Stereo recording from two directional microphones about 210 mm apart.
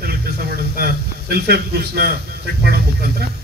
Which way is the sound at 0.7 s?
45° right (ahead or behind).